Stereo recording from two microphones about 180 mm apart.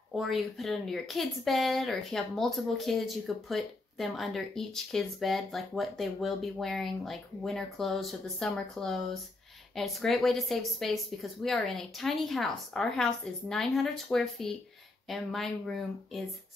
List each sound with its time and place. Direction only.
0.1 s speech: centre (ahead or behind)